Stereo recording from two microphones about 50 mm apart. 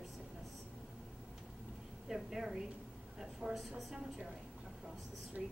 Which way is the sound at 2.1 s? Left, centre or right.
Centre.